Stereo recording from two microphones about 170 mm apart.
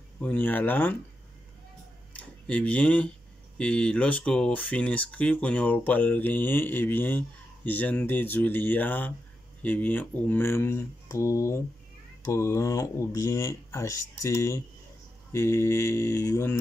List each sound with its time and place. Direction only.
0.2 s speech: 10° left (ahead or behind)
2.1 s a sound: 5° left (ahead or behind)
3.5 s speech: 5° left (ahead or behind)